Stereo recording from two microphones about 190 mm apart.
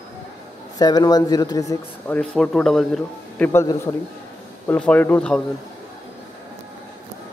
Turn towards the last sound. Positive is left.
turn(degrees=5)  # may be behind; listen again after turning